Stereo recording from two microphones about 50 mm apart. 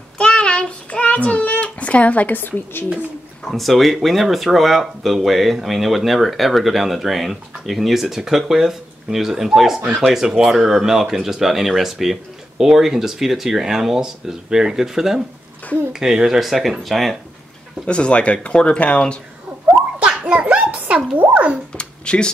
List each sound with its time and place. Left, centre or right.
0.2 s a child's voice: centre; by 2.9 s left
3.4 s speech: centre
9.8 s speech: right
10.0 s speech: centre
17.8 s speech: left
20.0 s a sound: right
21.2 s speech: right
21.7 s a sound: centre